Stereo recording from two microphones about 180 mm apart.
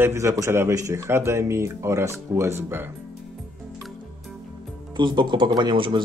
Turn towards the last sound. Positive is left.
turn(degrees=-25)  # may be behind; listen again after turning